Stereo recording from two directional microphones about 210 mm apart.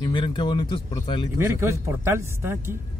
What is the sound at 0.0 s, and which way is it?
Speech, 20° left (ahead or behind).